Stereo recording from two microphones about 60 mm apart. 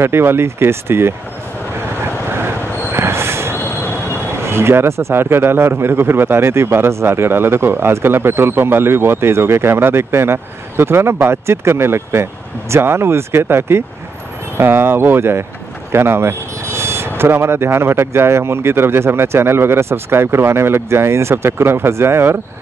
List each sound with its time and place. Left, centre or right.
0.0 s speech: right
2.3 s train: right
3.5 s train wheels squealing: left
4.4 s a man's voice: right